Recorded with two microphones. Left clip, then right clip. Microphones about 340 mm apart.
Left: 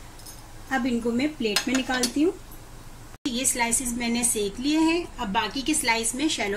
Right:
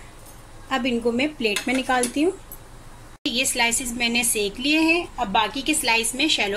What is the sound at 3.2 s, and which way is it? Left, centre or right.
A woman's voice, centre.